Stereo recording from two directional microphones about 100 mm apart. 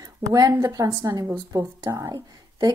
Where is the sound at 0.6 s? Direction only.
35° right (ahead or behind).